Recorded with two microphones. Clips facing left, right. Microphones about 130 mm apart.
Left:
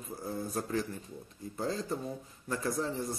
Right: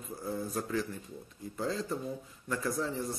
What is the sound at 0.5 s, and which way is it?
Speech, 35° left (ahead or behind).